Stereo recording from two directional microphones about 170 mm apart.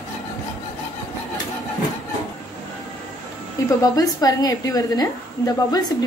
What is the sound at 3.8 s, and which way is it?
Speech, 20° left (ahead or behind).